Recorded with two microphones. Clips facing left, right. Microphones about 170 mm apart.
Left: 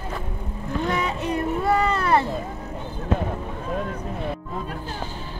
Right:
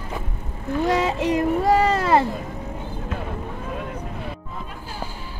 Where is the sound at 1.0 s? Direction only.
90° right.